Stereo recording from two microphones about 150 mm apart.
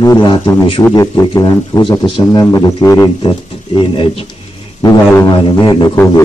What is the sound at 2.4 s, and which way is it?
Speech, 20° left (ahead or behind).